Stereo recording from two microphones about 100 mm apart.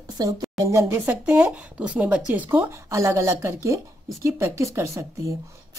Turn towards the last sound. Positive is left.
turn(degrees=-30)  # may be behind; listen again after turning